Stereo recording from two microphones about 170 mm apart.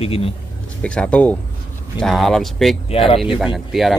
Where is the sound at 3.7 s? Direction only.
Centre (ahead or behind).